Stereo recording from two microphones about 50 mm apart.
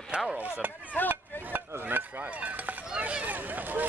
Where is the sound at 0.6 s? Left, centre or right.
Right.